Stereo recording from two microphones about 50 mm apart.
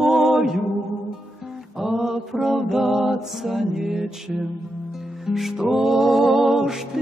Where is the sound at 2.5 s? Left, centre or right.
Centre.